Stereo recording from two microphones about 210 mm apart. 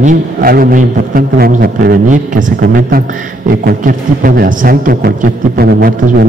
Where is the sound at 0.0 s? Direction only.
45° right (ahead or behind).